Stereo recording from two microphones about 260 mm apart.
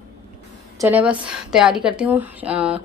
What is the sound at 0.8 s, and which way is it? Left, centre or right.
A woman's voice, centre.